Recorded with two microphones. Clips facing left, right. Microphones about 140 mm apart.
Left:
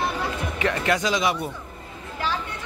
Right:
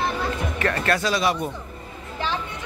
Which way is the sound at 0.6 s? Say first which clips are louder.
Left 1 dB; 15° left (ahead or behind).